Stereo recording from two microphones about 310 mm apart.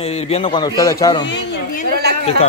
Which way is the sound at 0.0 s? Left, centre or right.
Centre.